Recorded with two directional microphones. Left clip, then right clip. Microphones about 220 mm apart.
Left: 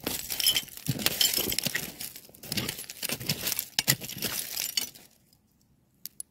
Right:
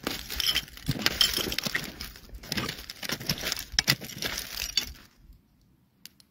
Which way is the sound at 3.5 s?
5° left (ahead or behind).